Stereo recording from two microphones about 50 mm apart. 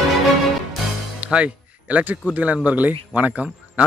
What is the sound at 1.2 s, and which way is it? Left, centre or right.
A man's voice, right.